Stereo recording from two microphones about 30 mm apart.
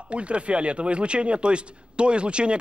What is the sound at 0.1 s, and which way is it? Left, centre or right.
Speech, right.